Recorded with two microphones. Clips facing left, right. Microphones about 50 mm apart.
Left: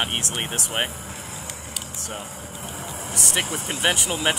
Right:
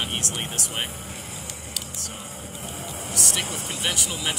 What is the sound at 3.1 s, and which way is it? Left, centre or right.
Speech, left.